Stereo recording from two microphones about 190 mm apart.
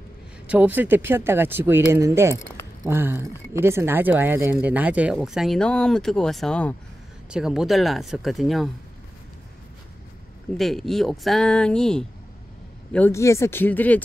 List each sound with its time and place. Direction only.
0.5 s speech: 10° right (ahead or behind)
10.6 s speech: centre (ahead or behind)